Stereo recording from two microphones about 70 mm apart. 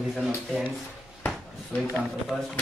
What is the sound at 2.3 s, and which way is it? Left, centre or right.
Speech, centre.